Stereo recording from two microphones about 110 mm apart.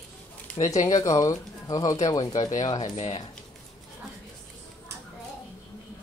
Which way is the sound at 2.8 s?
65° left (ahead or behind).